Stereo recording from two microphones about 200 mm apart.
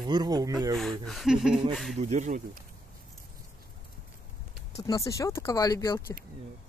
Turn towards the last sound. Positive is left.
turn(degrees=15)  # may be behind; listen again after turning